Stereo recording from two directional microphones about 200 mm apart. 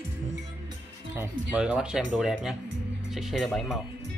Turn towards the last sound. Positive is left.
turn(degrees=0)  # may be behind; listen again after turning